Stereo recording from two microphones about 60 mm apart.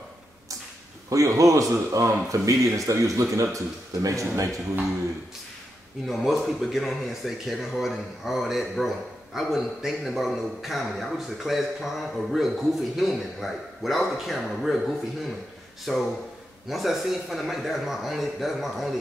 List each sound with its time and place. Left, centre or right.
1.1 s a man's voice: right
6.0 s speech: centre